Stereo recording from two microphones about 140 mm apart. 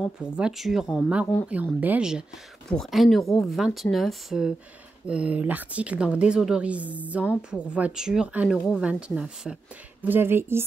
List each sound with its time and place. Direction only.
0.0 s a woman's voice: 5° right (ahead or behind)